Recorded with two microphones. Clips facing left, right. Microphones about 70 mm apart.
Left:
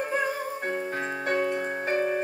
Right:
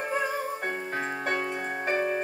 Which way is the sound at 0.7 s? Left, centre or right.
Right.